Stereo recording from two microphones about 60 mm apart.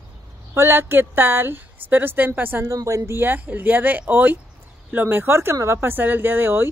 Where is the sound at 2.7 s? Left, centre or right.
Right.